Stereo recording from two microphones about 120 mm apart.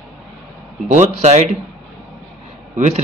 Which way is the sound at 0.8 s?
80° right.